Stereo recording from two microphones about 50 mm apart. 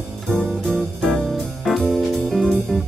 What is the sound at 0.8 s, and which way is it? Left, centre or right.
Music, centre.